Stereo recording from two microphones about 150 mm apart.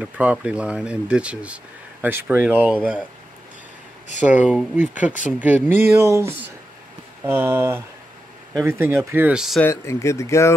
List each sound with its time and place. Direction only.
0.0 s speech: 10° right (ahead or behind)
4.2 s speech: 10° right (ahead or behind)
9.6 s speech: 15° left (ahead or behind)